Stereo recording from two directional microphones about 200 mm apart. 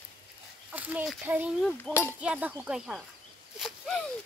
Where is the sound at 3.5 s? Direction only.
Centre (ahead or behind).